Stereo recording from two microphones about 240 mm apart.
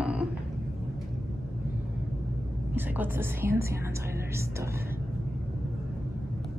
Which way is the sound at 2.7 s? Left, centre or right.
Centre.